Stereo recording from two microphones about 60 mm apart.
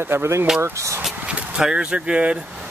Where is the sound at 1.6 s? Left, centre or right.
Centre.